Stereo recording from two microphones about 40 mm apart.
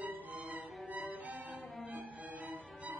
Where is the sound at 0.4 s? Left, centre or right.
Right.